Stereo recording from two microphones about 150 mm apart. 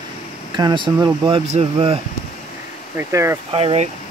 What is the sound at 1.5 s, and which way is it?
Speech, 45° right (ahead or behind).